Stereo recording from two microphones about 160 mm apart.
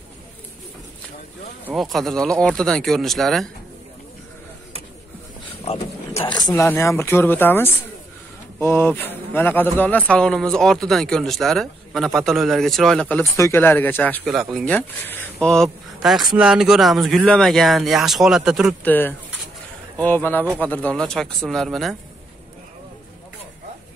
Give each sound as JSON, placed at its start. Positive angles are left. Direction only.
{"t": 1.7, "sound": "a man's voice", "side_deg": 0}
{"t": 5.7, "sound": "speech", "side_deg": 40}
{"t": 6.3, "sound": "a man's voice", "side_deg": 25}
{"t": 14.2, "sound": "a man's voice", "side_deg": 0}
{"t": 18.9, "sound": "a man's voice", "side_deg": 10}